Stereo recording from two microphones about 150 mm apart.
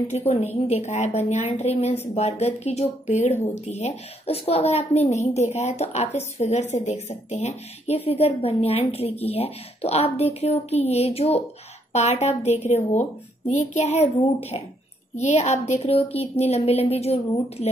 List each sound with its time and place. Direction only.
0.3 s a woman's voice: 45° left (ahead or behind)